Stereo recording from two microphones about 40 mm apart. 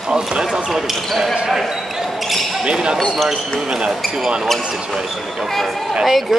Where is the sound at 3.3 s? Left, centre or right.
Centre.